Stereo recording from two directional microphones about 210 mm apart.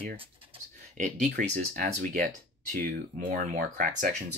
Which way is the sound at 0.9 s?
40° right (ahead or behind).